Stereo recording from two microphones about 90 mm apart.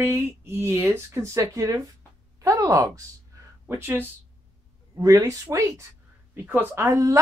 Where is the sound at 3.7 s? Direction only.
25° right (ahead or behind).